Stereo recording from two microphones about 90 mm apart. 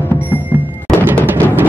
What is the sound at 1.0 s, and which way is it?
Music, 20° right (ahead or behind).